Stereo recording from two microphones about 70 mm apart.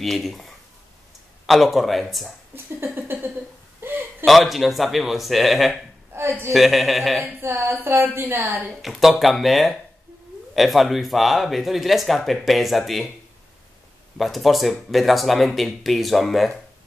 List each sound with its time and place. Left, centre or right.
0.0 s speech: centre
2.5 s a woman's voice: right
3.8 s a sound: right
4.2 s speech: centre
6.1 s a man's voice: right
6.5 s speech: centre
7.3 s a woman's voice: right
8.8 s speech: centre
14.1 s speech: centre